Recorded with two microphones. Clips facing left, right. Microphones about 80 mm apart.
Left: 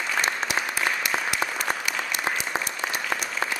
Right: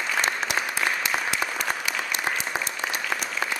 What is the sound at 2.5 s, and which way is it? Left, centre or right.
Applause, left.